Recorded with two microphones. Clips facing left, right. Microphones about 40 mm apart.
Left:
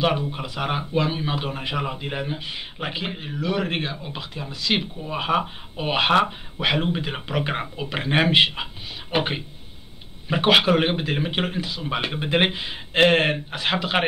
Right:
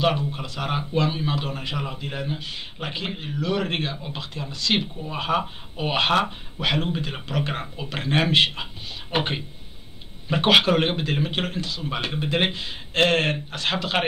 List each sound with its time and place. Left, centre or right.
0.3 s a man's voice: centre
10.4 s a man's voice: centre